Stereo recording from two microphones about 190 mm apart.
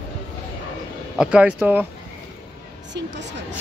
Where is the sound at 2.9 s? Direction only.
70° right (ahead or behind).